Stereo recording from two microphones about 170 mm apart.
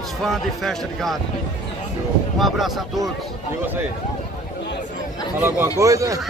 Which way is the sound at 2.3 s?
Centre (ahead or behind).